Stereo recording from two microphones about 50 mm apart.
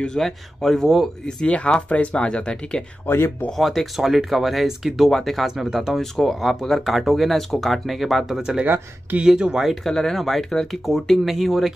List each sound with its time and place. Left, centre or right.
0.2 s speech: centre
1.2 s speech: left
3.1 s speech: left
3.5 s speech: centre
8.4 s speech: centre
9.8 s speech: centre